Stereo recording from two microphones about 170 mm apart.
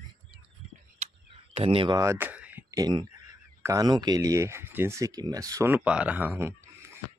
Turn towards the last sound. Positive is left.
turn(degrees=-15)  # may be behind; listen again after turning